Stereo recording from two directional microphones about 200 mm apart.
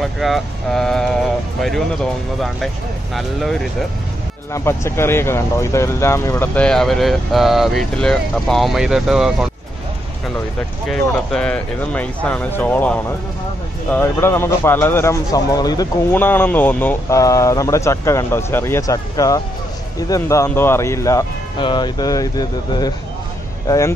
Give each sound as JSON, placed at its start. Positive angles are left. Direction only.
{"t": 0.0, "sound": "speech", "side_deg": 0}
{"t": 3.2, "sound": "speech", "side_deg": 0}
{"t": 4.5, "sound": "speech", "side_deg": 15}
{"t": 10.9, "sound": "speech", "side_deg": 5}